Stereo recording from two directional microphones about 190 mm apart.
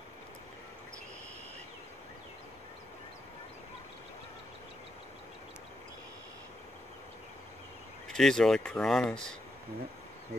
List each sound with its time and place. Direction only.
8.1 s speech: 5° left (ahead or behind)